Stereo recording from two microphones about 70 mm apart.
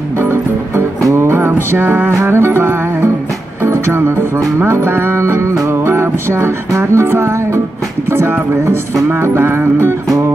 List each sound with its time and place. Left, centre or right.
0.2 s music: right
2.1 s music: right